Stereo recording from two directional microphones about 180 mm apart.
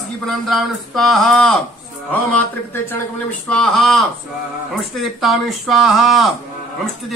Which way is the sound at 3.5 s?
Centre (ahead or behind).